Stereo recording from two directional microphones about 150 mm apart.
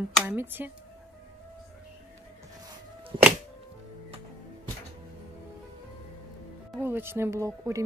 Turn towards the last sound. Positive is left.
turn(degrees=-20)  # may be behind; listen again after turning